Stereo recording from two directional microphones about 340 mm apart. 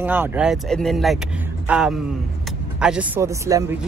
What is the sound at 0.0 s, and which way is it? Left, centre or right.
Speech, centre.